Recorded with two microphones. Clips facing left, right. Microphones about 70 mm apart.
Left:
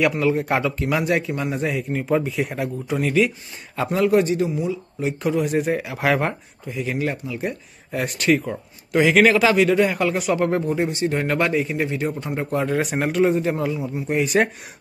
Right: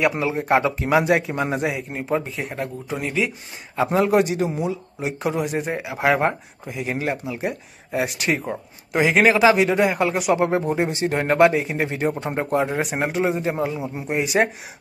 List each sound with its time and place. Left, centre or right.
0.1 s speech: centre
1.6 s speech: centre
3.9 s speech: right
4.2 s speech: right
5.4 s speech: centre
6.7 s speech: right
7.9 s speech: centre; by 12.6 s right
12.8 s speech: centre
13.6 s speech: right
14.0 s speech: centre